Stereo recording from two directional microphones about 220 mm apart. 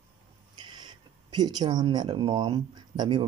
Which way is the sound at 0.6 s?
20° right (ahead or behind).